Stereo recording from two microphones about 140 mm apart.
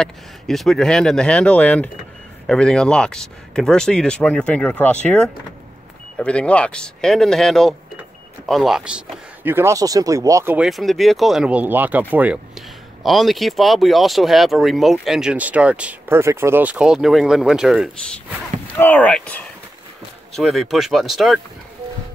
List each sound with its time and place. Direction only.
0.0 s speech: centre (ahead or behind); by 10.6 s 20° right (ahead or behind)
10.6 s speech: centre (ahead or behind)
18.8 s speech: 10° left (ahead or behind)